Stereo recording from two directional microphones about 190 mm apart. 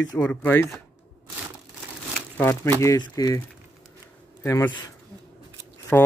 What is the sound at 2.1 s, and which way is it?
Crumpling, 10° left (ahead or behind).